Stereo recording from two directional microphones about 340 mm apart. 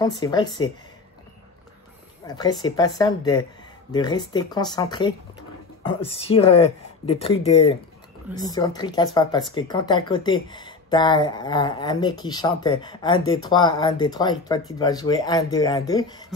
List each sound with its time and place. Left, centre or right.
0.0 s speech: centre
2.2 s speech: centre